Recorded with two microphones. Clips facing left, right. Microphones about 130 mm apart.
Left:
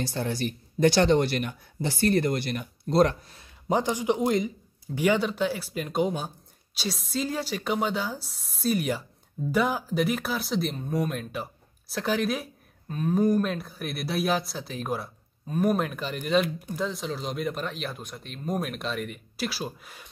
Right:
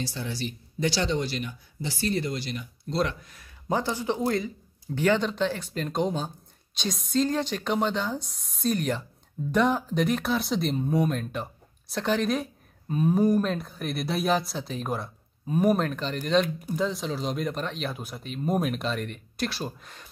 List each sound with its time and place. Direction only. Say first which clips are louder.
0.0 s speech: left 4 dB; 50° left (ahead or behind); by 3.4 s 35° left (ahead or behind)
3.6 s speech: left 2 dB; 15° left (ahead or behind)
12.8 s speech: right 1 dB; 10° right (ahead or behind); by 20.1 s 5° left (ahead or behind)